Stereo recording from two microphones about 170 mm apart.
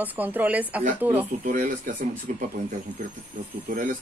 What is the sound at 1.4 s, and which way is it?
Speech, 50° right (ahead or behind).